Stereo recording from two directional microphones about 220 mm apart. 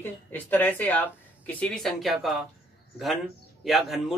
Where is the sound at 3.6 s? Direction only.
Centre (ahead or behind).